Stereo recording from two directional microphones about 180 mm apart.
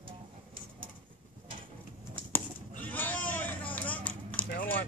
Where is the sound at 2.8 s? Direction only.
10° left (ahead or behind).